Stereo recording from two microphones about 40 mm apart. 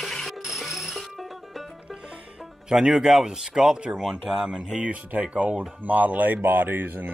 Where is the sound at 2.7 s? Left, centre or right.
Centre.